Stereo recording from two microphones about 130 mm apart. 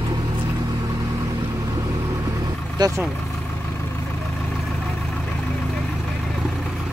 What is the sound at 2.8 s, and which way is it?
Speech, 30° right (ahead or behind).